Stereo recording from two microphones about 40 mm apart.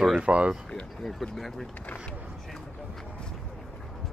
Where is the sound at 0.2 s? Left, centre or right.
Right.